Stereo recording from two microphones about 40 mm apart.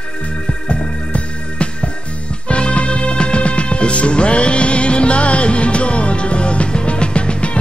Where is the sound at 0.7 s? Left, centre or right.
Left.